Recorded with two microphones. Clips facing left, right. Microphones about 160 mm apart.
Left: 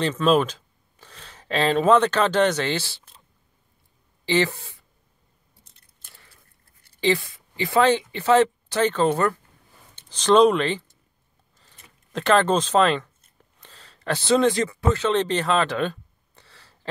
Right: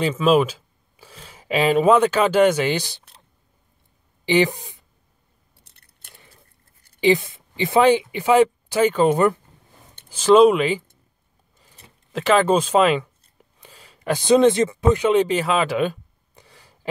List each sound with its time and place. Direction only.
0.0 s speech: 5° right (ahead or behind)
4.3 s speech: 15° right (ahead or behind)
5.6 s scissors: 65° right (ahead or behind)
7.0 s speech: 20° right (ahead or behind)
12.1 s speech: 5° right (ahead or behind)
13.6 s a sound: 10° right (ahead or behind)